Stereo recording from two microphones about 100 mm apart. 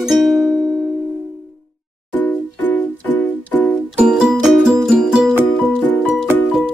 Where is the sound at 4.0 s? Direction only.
5° right (ahead or behind).